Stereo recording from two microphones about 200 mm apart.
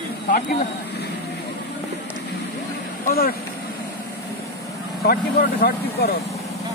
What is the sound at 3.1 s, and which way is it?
Vehicle, 45° left (ahead or behind).